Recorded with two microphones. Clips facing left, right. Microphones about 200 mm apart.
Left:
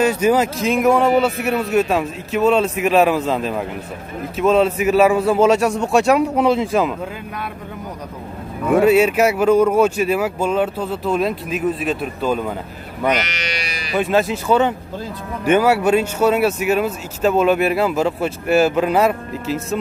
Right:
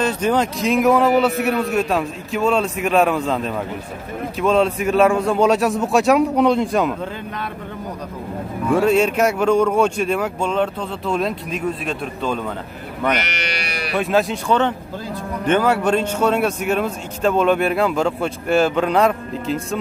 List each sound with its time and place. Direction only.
0.0 s a man's voice: 10° left (ahead or behind)
8.8 s speech: 5° left (ahead or behind)
13.1 s music: 60° right (ahead or behind)
13.9 s a man's voice: centre (ahead or behind)